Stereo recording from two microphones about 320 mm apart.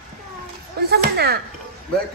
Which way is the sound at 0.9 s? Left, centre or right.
Right.